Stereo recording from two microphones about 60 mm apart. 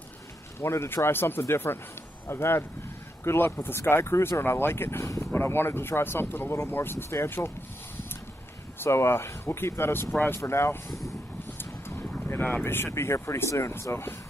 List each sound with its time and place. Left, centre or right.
0.6 s speech: left
5.0 s speech: left
5.3 s speech: left
8.7 s speech: left
10.1 s speech: left
10.4 s speech: left
12.4 s speech: left
12.8 s speech: left